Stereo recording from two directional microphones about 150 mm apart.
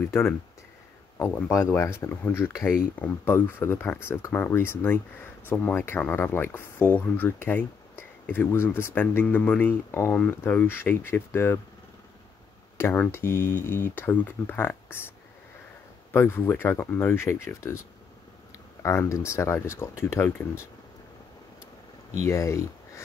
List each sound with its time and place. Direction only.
1.1 s speech: 15° left (ahead or behind)
12.7 s speech: 15° left (ahead or behind)
16.1 s speech: 15° left (ahead or behind)
18.8 s speech: 20° left (ahead or behind)
22.2 s speech: 20° left (ahead or behind)